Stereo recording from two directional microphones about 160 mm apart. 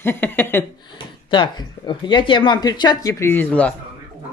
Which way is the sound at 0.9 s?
30° left (ahead or behind).